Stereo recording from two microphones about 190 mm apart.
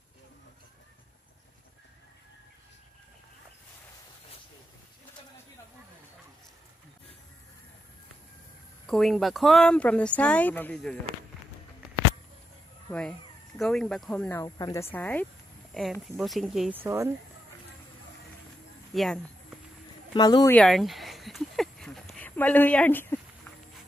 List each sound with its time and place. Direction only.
8.8 s speech: centre (ahead or behind)
13.6 s speech: 5° left (ahead or behind)
16.8 s speech: 15° right (ahead or behind)
18.9 s a sound: centre (ahead or behind)
20.2 s speech: 20° left (ahead or behind)
20.5 s a sound: 5° left (ahead or behind)